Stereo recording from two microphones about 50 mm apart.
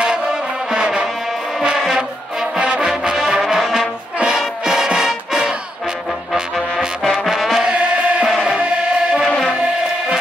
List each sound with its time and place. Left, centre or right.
0.0 s music: centre
7.2 s music: centre
7.6 s music: right